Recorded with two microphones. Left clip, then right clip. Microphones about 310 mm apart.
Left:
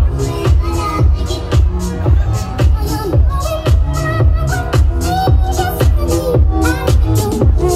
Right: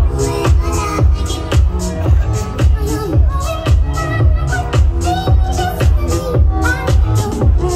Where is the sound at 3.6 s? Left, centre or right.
Centre.